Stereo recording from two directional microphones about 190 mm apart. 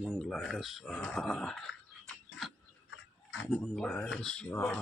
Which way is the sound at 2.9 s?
90° left.